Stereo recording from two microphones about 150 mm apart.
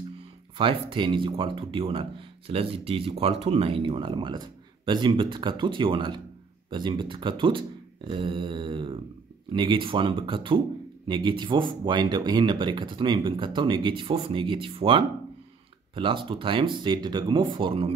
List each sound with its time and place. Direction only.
0.6 s speech: 35° right (ahead or behind)